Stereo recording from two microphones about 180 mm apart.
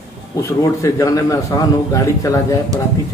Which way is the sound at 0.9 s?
20° left (ahead or behind).